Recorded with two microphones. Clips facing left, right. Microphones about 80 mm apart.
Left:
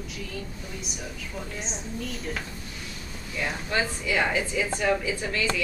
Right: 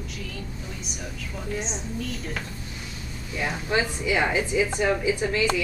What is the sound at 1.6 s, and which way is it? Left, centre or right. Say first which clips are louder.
Speech: right 2 dB; centre.